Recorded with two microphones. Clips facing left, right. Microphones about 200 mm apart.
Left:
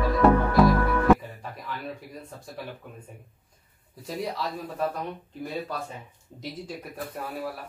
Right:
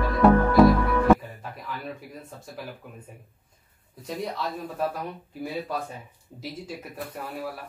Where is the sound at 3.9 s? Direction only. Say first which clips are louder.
Even; centre (ahead or behind).